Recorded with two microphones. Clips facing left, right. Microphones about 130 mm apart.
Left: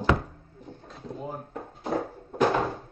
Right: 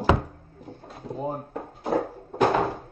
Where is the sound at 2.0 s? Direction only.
20° right (ahead or behind).